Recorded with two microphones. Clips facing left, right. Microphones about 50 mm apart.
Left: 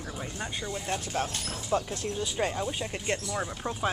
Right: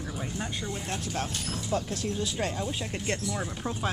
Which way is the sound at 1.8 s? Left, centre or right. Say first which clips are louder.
Right 1 dB; centre.